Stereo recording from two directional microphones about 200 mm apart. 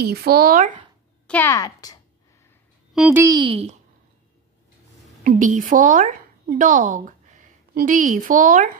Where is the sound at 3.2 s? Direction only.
25° right (ahead or behind).